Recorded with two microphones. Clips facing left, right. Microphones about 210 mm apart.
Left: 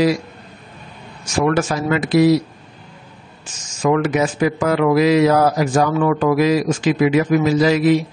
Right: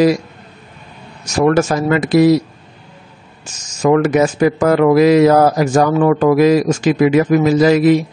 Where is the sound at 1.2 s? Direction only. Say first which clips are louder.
Right 4 dB; 45° right (ahead or behind).